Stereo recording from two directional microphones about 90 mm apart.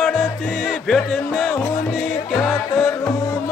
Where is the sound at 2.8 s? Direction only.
30° left (ahead or behind).